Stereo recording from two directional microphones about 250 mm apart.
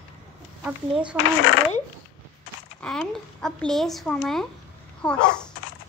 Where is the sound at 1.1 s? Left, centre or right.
Left.